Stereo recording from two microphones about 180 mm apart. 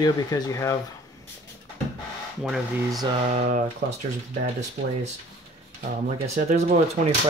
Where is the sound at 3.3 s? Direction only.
45° right (ahead or behind).